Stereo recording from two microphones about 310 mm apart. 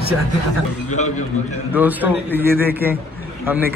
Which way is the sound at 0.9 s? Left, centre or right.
Left.